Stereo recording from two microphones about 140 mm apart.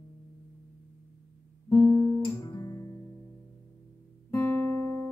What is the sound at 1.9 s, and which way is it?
Guitar, 25° left (ahead or behind).